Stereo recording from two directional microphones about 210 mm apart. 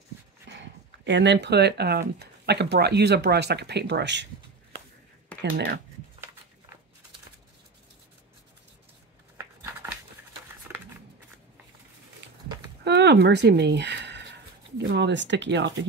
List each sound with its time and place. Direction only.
0.5 s a sound: 60° right (ahead or behind)
1.0 s speech: 55° right (ahead or behind)
5.4 s speech: 55° right (ahead or behind)
10.7 s scissors: 10° right (ahead or behind)
12.2 s livestock: 55° right (ahead or behind)
12.8 s a sound: 55° right (ahead or behind)
14.8 s speech: 55° right (ahead or behind)